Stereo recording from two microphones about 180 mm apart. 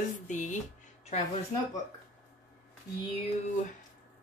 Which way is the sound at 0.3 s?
45° left (ahead or behind).